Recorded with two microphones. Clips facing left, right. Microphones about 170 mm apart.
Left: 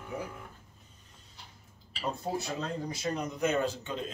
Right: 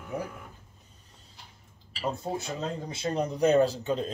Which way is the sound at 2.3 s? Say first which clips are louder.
Right 1 dB; 20° right (ahead or behind).